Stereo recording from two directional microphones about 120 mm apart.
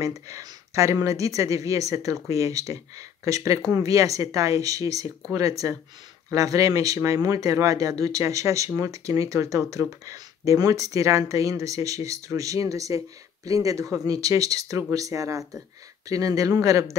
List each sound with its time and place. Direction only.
0.0 s speech: 30° right (ahead or behind)